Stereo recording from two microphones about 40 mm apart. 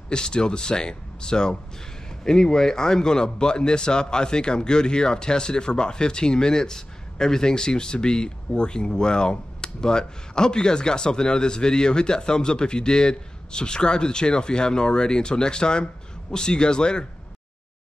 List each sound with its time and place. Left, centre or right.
0.1 s speech: left